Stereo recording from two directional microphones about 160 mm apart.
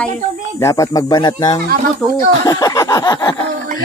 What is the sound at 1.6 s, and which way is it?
Speech, 60° right (ahead or behind).